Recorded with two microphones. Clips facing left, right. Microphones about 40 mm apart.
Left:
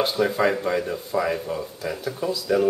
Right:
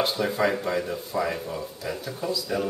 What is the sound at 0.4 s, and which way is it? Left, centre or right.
Speech, centre.